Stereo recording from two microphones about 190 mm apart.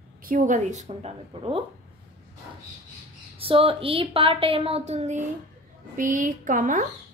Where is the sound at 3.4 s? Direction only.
30° right (ahead or behind).